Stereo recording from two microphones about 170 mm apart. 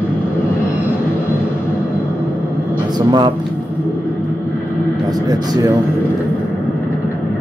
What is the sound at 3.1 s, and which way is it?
Speech, 25° right (ahead or behind).